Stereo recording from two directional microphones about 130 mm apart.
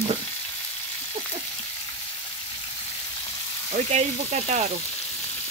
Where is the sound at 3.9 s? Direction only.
60° right (ahead or behind).